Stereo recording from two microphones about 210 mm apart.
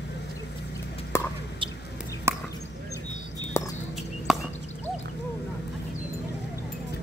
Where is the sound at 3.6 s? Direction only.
10° left (ahead or behind).